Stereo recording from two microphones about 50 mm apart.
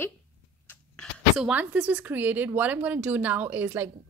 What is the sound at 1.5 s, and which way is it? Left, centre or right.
Speech, right.